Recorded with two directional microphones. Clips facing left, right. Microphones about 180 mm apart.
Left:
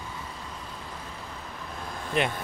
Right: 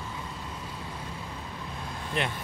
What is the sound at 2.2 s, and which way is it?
Speech, 15° left (ahead or behind).